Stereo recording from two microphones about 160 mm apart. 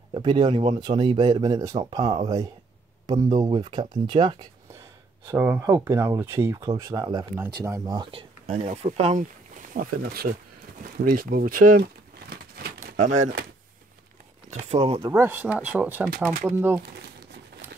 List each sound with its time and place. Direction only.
0.1 s speech: 30° right (ahead or behind)
5.3 s speech: 15° right (ahead or behind); by 10.3 s 60° right (ahead or behind)
11.1 s crumpling: 65° right (ahead or behind); by 13.3 s 50° right (ahead or behind)
14.5 s speech: 45° right (ahead or behind)
15.0 s speech: 15° right (ahead or behind)